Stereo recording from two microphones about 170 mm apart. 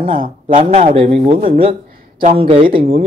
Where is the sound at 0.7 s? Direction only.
35° right (ahead or behind).